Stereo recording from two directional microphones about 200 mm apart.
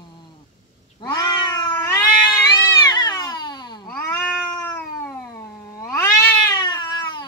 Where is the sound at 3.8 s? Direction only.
5° left (ahead or behind).